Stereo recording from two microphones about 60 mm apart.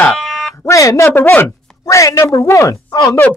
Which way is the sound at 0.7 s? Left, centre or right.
Left.